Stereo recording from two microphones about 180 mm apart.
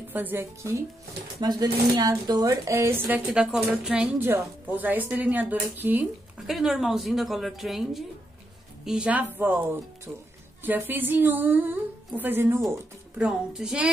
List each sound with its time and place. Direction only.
0.1 s a woman's voice: 10° right (ahead or behind)
3.3 s a woman's voice: 5° right (ahead or behind)
10.6 s a woman's voice: 10° right (ahead or behind)